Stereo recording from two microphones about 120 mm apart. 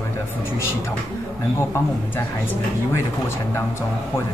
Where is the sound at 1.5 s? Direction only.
20° left (ahead or behind).